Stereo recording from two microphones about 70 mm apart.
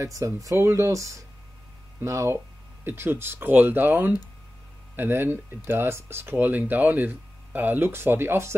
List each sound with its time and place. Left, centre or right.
0.0 s speech: right
2.8 s speech: right